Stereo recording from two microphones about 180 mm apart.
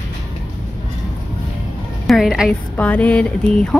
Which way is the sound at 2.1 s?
Centre (ahead or behind).